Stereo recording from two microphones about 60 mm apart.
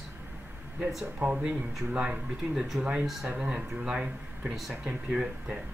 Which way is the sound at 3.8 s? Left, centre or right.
Centre.